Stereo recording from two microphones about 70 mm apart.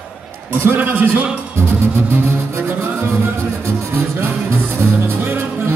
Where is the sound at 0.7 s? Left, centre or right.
Right.